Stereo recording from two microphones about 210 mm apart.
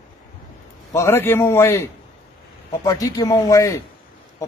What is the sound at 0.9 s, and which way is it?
Speech, 15° left (ahead or behind).